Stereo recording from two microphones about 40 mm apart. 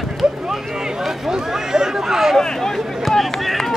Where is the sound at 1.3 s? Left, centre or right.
Centre.